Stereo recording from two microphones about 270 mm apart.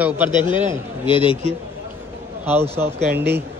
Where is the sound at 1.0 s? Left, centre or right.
Centre.